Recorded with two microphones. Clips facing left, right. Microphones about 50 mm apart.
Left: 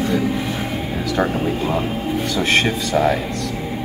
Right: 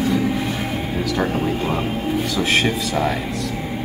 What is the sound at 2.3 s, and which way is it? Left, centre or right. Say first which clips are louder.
Speech: left 2 dB; centre.